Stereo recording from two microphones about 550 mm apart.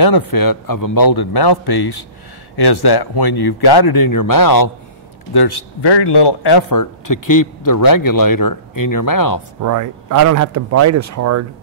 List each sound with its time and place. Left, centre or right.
0.0 s a man's voice: left
9.6 s speech: right